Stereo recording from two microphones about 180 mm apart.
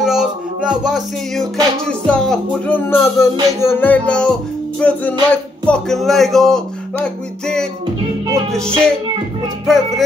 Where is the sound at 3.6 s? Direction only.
10° left (ahead or behind).